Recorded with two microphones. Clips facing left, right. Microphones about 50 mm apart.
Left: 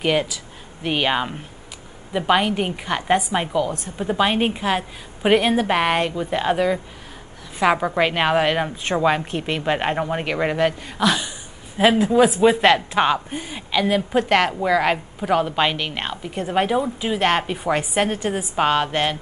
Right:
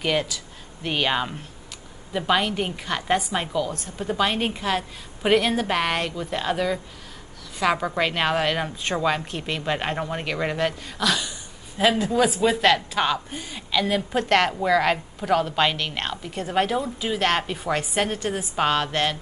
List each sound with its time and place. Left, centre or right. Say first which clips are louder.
0.0 s speech: left 4 dB; centre